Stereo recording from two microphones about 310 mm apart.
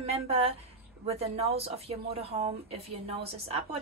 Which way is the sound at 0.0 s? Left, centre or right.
Centre.